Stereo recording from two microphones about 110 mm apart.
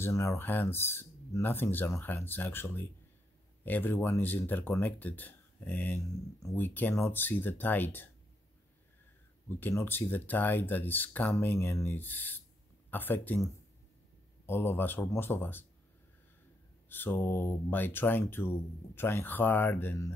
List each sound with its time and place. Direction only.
0.0 s speech: 30° left (ahead or behind)
9.5 s speech: 20° left (ahead or behind)
14.4 s speech: 20° left (ahead or behind)
16.9 s speech: 20° left (ahead or behind)